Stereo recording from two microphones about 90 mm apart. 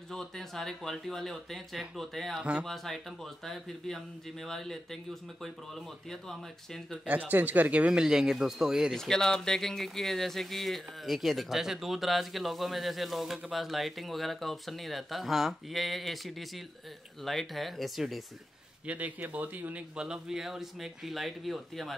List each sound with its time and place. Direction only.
0.1 s speech: 5° left (ahead or behind)
6.0 s speech: 5° left (ahead or behind)
7.1 s a man's voice: 20° right (ahead or behind)
8.9 s speech: 5° left (ahead or behind)
18.9 s a man's voice: 15° right (ahead or behind)
20.0 s speech: 5° right (ahead or behind)